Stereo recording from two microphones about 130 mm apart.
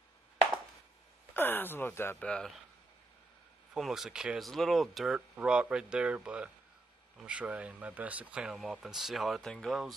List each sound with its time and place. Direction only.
1.3 s speech: 15° left (ahead or behind)
2.2 s speech: 5° left (ahead or behind)
3.7 s speech: centre (ahead or behind)